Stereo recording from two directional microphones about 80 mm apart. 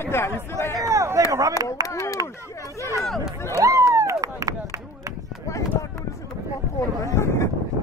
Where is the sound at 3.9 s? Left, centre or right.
Right.